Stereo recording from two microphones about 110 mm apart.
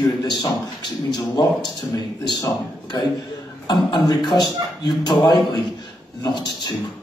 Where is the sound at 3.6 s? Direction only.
45° left (ahead or behind).